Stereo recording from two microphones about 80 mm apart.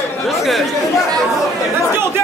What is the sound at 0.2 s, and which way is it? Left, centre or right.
Speech, centre.